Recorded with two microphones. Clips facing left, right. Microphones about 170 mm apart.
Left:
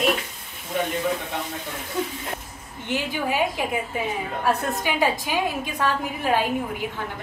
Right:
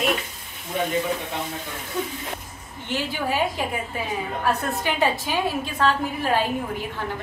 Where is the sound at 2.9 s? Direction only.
15° left (ahead or behind).